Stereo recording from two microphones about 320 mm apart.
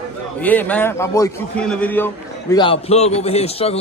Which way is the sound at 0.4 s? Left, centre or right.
Centre.